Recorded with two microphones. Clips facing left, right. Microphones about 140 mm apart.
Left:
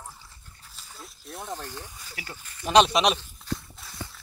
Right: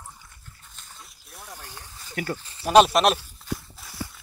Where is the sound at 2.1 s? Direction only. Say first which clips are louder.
Right 14 dB; 50° right (ahead or behind).